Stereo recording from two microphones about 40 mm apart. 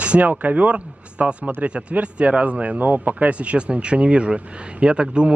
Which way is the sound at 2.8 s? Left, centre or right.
Right.